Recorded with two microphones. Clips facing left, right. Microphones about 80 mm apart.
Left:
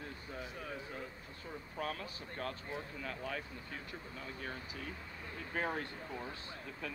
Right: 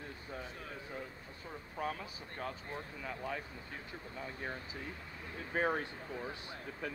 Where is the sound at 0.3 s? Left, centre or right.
Centre.